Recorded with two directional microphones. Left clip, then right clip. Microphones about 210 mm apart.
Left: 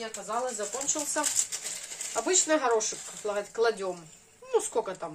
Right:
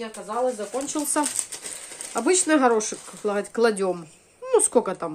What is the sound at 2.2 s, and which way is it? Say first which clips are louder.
A woman's voice: right 7 dB; 55° right (ahead or behind).